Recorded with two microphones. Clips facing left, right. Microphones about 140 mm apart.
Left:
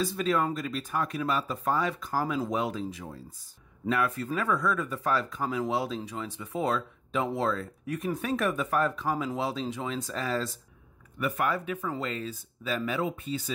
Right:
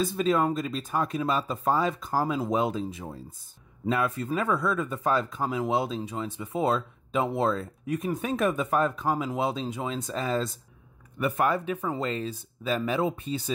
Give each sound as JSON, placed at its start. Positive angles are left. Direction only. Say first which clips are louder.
{"t": 0.0, "sound": "speech", "louder": "right 3 dB", "side_deg": -25}
{"t": 11.1, "sound": "speech", "louder": "right 3 dB", "side_deg": -35}